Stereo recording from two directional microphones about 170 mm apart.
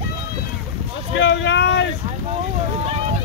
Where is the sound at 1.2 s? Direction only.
90° left.